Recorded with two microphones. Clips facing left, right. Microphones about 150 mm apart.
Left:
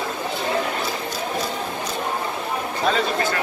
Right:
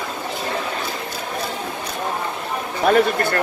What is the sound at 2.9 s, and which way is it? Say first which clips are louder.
Speech: right 6 dB; 55° right (ahead or behind).